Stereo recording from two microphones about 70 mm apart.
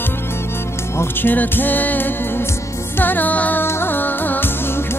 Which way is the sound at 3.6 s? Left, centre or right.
Left.